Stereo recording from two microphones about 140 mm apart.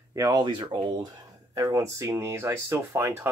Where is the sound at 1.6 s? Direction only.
20° right (ahead or behind).